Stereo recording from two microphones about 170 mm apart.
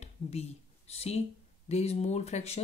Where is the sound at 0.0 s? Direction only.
35° left (ahead or behind).